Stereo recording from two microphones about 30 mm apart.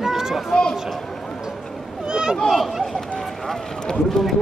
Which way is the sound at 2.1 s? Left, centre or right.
Right.